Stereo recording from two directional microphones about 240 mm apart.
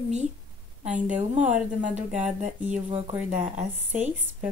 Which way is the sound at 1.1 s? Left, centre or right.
Right.